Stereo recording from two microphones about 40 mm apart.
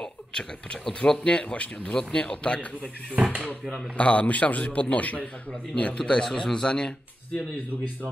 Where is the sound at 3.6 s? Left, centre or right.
Centre.